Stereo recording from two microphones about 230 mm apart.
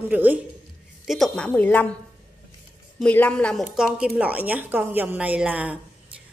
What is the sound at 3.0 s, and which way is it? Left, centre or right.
A woman's voice, centre.